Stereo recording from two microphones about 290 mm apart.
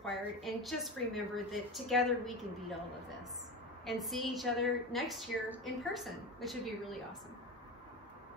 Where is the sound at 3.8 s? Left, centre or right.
Centre.